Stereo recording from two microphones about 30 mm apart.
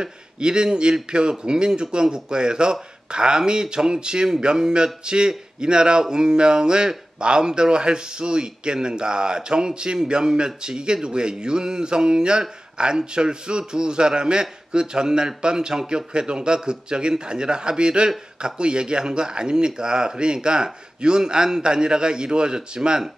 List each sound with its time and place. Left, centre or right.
0.0 s speech: right